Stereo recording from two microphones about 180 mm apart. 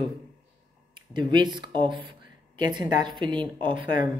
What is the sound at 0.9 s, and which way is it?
A woman's voice, 25° right (ahead or behind).